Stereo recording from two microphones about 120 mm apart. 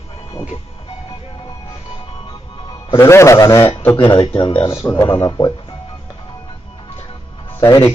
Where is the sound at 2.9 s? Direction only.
20° left (ahead or behind).